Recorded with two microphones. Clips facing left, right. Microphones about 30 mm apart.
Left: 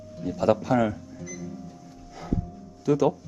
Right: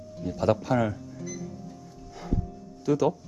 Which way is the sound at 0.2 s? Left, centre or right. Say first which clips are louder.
Left 2 dB; centre.